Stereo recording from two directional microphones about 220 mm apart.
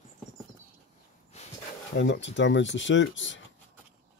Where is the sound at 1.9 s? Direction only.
55° left (ahead or behind).